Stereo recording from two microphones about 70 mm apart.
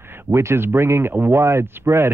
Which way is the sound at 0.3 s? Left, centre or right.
Right.